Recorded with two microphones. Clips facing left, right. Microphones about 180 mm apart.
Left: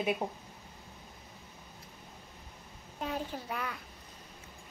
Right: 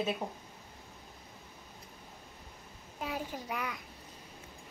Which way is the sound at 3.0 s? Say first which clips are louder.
Left 1 dB; 10° right (ahead or behind).